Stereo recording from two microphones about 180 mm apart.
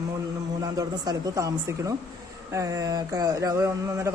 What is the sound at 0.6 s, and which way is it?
Speech, 20° right (ahead or behind).